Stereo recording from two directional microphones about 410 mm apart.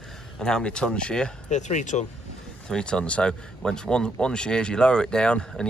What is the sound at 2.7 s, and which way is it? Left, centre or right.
Speech, centre.